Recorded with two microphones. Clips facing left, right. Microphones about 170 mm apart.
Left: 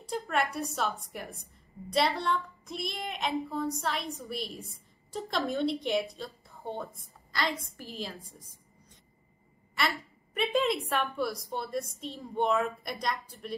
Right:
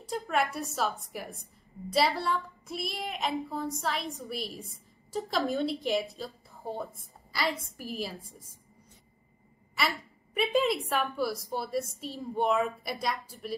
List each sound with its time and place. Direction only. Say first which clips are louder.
0.0 s a woman's voice: right 1 dB; centre (ahead or behind)
9.8 s a woman's voice: even; centre (ahead or behind)